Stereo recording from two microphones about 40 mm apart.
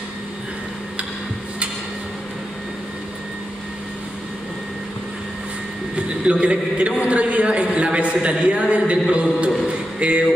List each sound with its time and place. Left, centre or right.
5.9 s a man's voice: right